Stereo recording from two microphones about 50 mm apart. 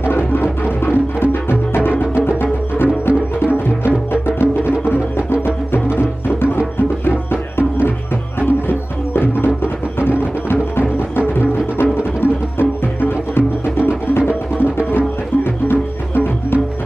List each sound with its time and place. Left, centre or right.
0.0 s music: left